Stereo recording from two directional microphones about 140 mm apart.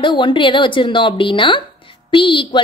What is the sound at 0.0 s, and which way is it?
Speech, 35° left (ahead or behind).